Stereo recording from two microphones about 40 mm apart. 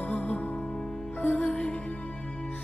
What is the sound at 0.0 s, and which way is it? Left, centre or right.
Music, left.